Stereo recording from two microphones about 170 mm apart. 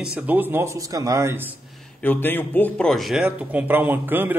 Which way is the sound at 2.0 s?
10° left (ahead or behind).